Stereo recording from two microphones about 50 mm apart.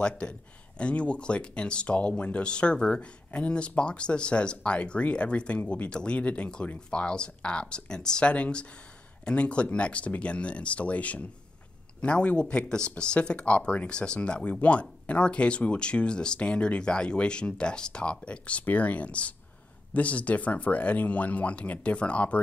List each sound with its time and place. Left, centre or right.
0.0 s speech: centre